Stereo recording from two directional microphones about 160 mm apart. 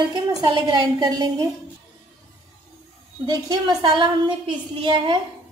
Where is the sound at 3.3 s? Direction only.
25° right (ahead or behind).